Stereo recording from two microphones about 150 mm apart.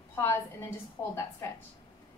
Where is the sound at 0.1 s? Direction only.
15° left (ahead or behind).